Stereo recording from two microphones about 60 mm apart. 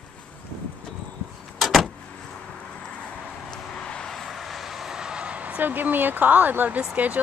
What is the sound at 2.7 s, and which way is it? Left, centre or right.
Vehicle, centre.